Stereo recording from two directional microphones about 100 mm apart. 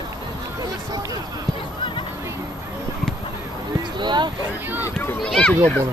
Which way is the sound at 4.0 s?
50° right (ahead or behind).